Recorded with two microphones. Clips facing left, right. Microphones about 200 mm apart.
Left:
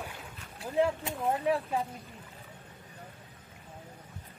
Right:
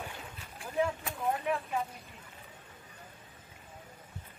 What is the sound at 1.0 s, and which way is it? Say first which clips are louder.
Speech: left 3 dB; 30° left (ahead or behind).